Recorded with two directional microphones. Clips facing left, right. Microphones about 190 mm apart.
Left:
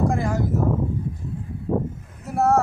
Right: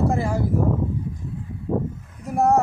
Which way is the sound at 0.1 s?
10° right (ahead or behind).